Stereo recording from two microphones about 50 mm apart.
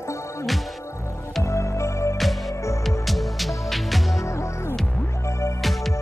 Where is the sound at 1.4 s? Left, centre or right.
Left.